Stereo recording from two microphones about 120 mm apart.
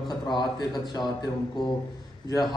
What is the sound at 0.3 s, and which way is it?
Speech, 35° left (ahead or behind).